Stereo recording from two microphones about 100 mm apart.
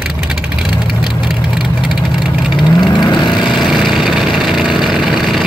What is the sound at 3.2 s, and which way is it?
Vehicle, centre (ahead or behind).